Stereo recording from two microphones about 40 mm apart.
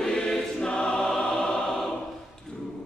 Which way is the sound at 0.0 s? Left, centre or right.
Centre.